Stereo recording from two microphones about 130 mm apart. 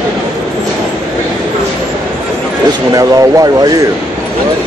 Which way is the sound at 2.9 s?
25° right (ahead or behind).